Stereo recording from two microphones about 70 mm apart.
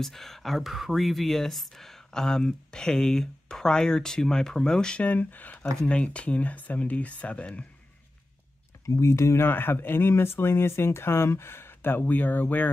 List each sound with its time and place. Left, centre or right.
0.0 s speech: centre
8.8 s speech: left
9.5 s speech: left